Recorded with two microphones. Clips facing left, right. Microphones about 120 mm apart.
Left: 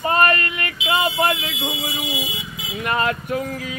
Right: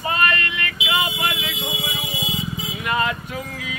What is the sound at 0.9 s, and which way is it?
Mantra, 45° left (ahead or behind).